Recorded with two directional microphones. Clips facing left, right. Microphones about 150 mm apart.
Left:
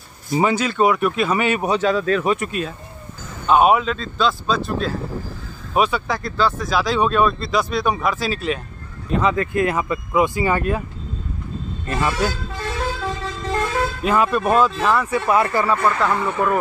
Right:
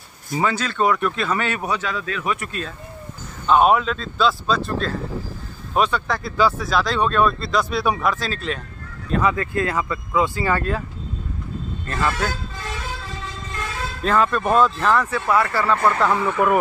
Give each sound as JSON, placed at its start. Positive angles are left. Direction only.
{"t": 0.4, "sound": "speech", "side_deg": 15}
{"t": 2.3, "sound": "speech", "side_deg": 20}
{"t": 3.4, "sound": "speech", "side_deg": 5}
{"t": 6.3, "sound": "speech", "side_deg": -10}
{"t": 6.7, "sound": "speech", "side_deg": 5}
{"t": 9.2, "sound": "speech", "side_deg": 20}
{"t": 11.9, "sound": "speech", "side_deg": 15}
{"t": 14.0, "sound": "speech", "side_deg": 10}
{"t": 15.1, "sound": "speech", "side_deg": 20}
{"t": 15.8, "sound": "speech", "side_deg": 0}